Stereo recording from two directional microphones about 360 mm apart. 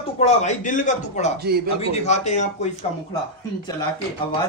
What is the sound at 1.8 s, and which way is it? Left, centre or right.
Speech, centre.